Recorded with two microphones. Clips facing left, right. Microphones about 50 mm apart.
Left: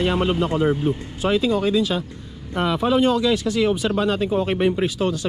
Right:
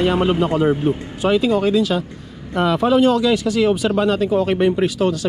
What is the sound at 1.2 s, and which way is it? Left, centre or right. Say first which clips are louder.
Speech: right 3 dB; right.